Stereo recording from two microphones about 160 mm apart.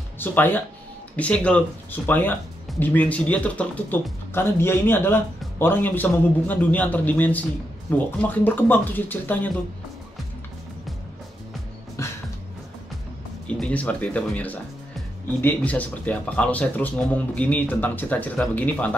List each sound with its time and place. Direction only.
0.2 s speech: 10° left (ahead or behind)
12.0 s music: 15° left (ahead or behind)
13.5 s speech: 5° left (ahead or behind)